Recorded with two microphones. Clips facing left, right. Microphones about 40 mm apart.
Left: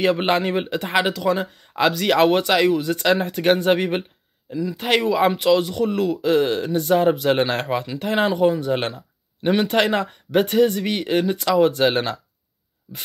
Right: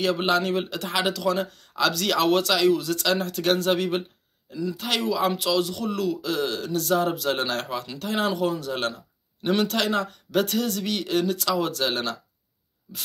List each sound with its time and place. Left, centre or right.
0.0 s speech: left